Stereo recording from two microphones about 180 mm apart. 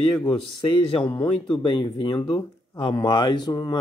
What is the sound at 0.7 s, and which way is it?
Speech, 25° left (ahead or behind).